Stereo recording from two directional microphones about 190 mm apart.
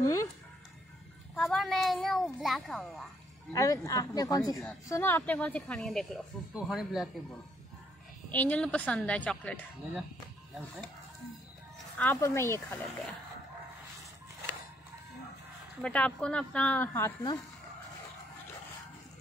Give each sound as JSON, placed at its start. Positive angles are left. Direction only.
{"t": 0.0, "sound": "speech", "side_deg": 15}
{"t": 1.3, "sound": "a child's voice", "side_deg": 0}
{"t": 3.5, "sound": "a child's voice", "side_deg": 15}
{"t": 8.3, "sound": "speech", "side_deg": 10}
{"t": 12.0, "sound": "speech", "side_deg": 10}
{"t": 15.8, "sound": "speech", "side_deg": 5}